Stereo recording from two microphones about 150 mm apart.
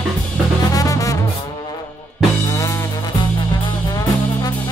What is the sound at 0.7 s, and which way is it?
Music, 25° left (ahead or behind).